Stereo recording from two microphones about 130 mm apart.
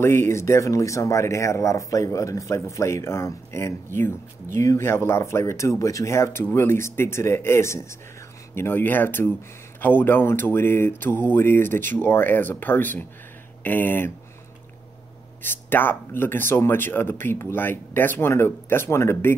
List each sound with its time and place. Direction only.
0.0 s speech: 20° left (ahead or behind)
15.4 s speech: 15° left (ahead or behind)